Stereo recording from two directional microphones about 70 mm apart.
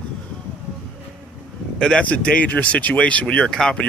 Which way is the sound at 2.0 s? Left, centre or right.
Centre.